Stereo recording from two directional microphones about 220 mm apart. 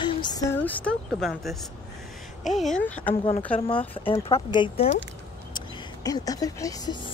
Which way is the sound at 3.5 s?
25° left (ahead or behind).